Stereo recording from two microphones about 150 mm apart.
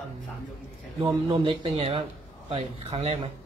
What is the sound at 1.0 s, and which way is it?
A man's voice, 35° right (ahead or behind).